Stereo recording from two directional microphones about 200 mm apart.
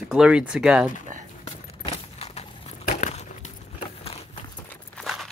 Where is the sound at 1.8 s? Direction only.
30° left (ahead or behind).